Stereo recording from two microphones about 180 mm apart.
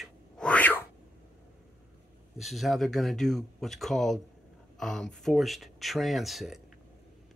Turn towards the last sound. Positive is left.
turn(degrees=0)  # may be behind; listen again after turning